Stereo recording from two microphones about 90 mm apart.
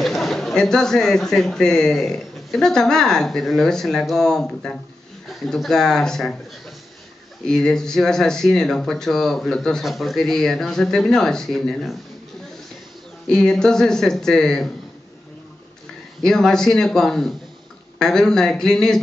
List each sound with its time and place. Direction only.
0.0 s a man's voice: centre (ahead or behind)
7.4 s a man's voice: 5° left (ahead or behind)
13.3 s a man's voice: 5° left (ahead or behind)
16.2 s a man's voice: 5° left (ahead or behind)